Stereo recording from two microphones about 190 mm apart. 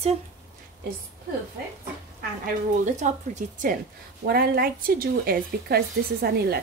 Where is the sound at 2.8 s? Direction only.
40° right (ahead or behind).